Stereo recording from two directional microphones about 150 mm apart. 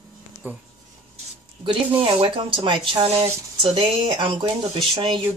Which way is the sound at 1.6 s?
35° right (ahead or behind).